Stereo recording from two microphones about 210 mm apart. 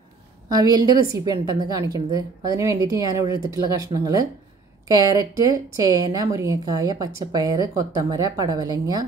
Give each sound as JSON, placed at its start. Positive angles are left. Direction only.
{"t": 0.5, "sound": "a woman's voice", "side_deg": -20}